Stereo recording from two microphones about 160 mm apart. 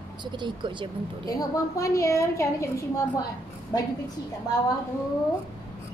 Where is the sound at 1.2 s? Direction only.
20° left (ahead or behind).